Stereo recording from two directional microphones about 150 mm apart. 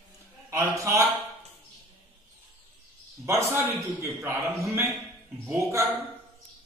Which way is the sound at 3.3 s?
15° right (ahead or behind).